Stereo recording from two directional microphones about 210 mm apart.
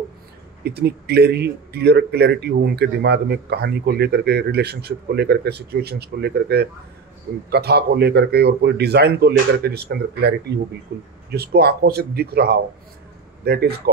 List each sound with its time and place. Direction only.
0.7 s speech: 50° right (ahead or behind)